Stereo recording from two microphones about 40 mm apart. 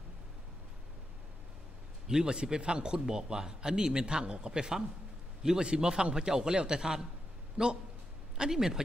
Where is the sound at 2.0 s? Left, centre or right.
Centre.